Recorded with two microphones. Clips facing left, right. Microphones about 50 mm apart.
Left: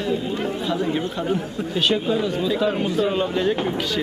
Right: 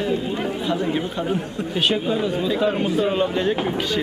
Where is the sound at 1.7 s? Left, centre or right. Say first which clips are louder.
Even; centre.